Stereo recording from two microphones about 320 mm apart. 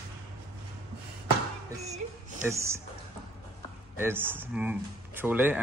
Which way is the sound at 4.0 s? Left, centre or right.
Centre.